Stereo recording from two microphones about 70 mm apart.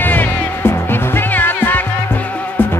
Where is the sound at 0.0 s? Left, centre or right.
Left.